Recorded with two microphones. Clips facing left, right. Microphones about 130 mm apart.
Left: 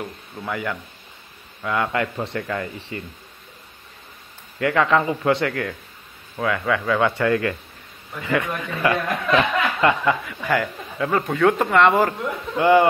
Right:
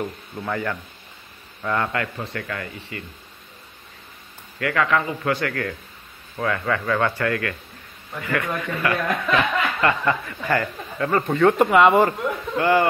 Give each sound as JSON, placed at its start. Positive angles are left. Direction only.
{"t": 0.4, "sound": "speech", "side_deg": 5}
{"t": 2.4, "sound": "a man's voice", "side_deg": 20}
{"t": 4.6, "sound": "a man's voice", "side_deg": 25}
{"t": 6.3, "sound": "speech", "side_deg": 5}
{"t": 7.2, "sound": "a man's voice", "side_deg": 20}
{"t": 10.2, "sound": "speech", "side_deg": 5}
{"t": 12.5, "sound": "speech", "side_deg": 15}